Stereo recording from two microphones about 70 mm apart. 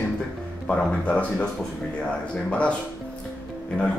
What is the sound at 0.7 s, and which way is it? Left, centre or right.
Speech, centre.